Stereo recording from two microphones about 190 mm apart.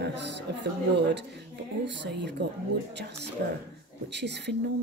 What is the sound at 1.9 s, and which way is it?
Speech, 60° right (ahead or behind).